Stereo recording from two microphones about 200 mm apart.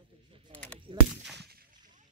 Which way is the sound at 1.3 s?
55° right (ahead or behind).